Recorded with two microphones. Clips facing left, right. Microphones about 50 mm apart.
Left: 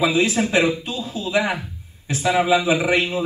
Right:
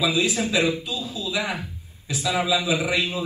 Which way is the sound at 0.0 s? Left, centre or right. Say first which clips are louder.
Left 4 dB; left.